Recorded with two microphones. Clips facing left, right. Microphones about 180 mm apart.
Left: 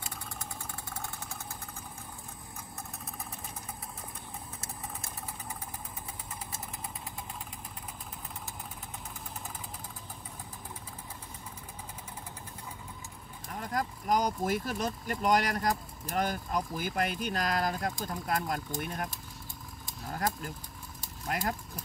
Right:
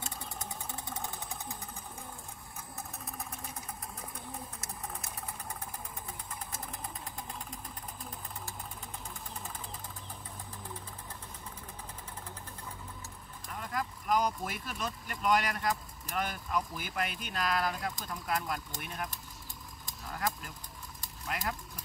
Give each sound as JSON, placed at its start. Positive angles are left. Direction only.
{"t": 13.5, "sound": "speech", "side_deg": 40}
{"t": 20.1, "sound": "vehicle", "side_deg": 45}
{"t": 21.3, "sound": "speech", "side_deg": 45}